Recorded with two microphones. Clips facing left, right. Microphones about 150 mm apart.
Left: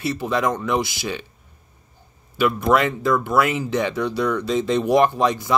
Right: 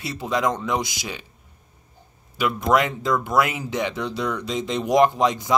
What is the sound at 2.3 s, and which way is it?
Speech, 15° right (ahead or behind).